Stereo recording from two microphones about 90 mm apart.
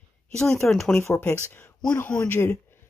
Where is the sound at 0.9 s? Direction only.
30° left (ahead or behind).